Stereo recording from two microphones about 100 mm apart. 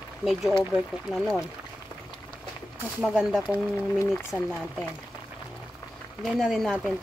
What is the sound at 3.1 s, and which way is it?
Speech, 15° right (ahead or behind).